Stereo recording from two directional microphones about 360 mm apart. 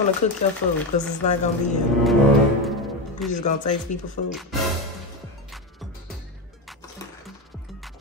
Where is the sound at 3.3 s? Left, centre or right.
Left.